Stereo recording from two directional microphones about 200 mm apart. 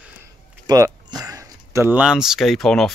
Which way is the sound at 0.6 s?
20° right (ahead or behind).